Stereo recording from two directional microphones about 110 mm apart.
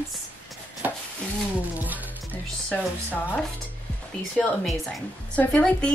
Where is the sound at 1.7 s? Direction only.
15° right (ahead or behind).